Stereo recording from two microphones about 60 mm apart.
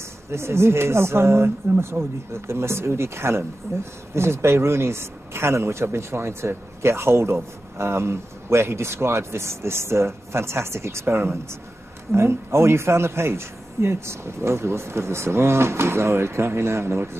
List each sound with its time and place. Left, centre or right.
0.3 s speech: right